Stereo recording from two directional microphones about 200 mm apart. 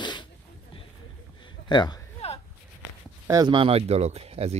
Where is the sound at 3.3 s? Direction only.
20° right (ahead or behind).